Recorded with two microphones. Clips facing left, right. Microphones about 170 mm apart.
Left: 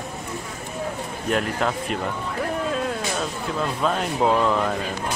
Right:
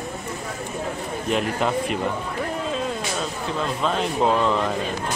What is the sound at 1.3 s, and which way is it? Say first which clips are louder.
Speech: right 1 dB; 5° right (ahead or behind).